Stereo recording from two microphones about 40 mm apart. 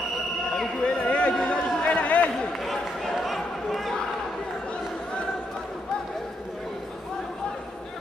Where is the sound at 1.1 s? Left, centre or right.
Left.